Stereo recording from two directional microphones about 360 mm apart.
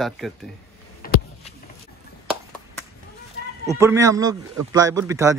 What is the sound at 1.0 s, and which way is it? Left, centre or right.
Vehicle, left.